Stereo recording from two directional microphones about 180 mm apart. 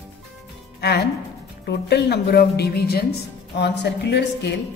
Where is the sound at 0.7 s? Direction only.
65° left (ahead or behind).